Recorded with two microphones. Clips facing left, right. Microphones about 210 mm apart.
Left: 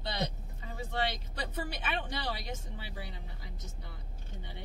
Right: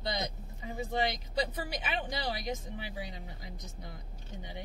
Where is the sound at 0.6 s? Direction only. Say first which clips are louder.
Right 3 dB; 15° right (ahead or behind).